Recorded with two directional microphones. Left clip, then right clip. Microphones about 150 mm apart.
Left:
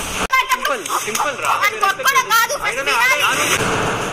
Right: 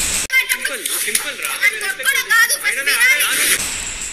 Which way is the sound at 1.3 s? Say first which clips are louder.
Right 1 dB; 40° left (ahead or behind).